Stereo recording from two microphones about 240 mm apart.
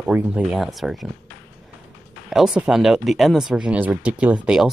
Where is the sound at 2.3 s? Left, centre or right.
Centre.